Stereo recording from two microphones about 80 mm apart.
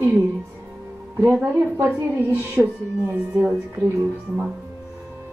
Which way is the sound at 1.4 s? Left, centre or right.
Right.